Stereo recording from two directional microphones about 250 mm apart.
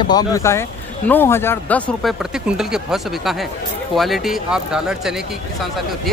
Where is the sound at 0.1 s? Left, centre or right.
Centre.